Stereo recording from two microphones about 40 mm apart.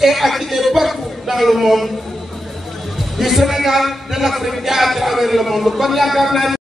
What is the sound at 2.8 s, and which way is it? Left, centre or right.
Music, centre.